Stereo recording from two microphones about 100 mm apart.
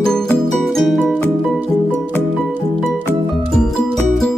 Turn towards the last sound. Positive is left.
turn(degrees=5)  # may be behind; listen again after turning